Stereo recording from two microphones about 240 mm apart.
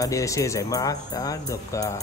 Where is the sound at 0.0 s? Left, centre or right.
Centre.